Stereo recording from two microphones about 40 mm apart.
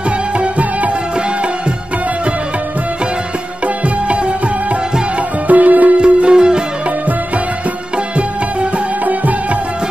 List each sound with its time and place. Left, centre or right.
5.5 s music: right
5.9 s music: right